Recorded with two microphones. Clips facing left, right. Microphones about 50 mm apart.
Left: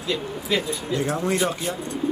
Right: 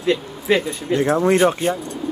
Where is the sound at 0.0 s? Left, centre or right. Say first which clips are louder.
Right 6 dB; right.